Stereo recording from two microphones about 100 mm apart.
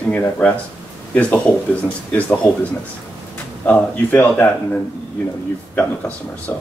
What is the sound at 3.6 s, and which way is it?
Speech, 15° left (ahead or behind).